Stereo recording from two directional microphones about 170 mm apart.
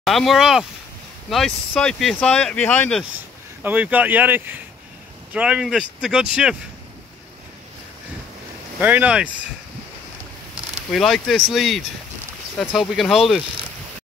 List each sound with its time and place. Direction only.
0.0 s speech: centre (ahead or behind)
3.6 s speech: 10° right (ahead or behind)
8.8 s speech: 10° right (ahead or behind)
10.9 s speech: centre (ahead or behind)